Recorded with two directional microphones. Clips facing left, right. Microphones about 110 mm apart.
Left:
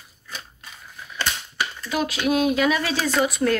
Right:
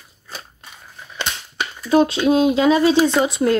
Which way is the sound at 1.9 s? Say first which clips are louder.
Right 9 dB; 30° right (ahead or behind).